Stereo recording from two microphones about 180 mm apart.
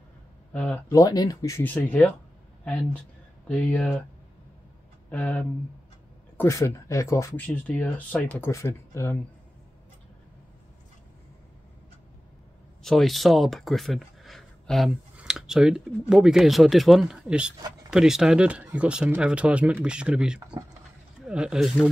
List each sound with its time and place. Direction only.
0.5 s speech: 10° left (ahead or behind)
0.8 s speech: 20° left (ahead or behind)
3.4 s speech: 10° left (ahead or behind)
5.1 s speech: 10° left (ahead or behind)
12.8 s speech: centre (ahead or behind)